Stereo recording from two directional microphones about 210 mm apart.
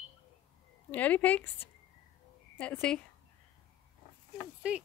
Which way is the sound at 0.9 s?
5° left (ahead or behind).